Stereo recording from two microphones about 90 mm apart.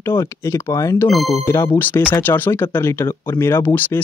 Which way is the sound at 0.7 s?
35° left (ahead or behind).